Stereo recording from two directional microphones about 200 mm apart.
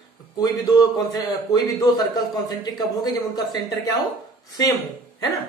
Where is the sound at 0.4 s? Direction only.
20° left (ahead or behind).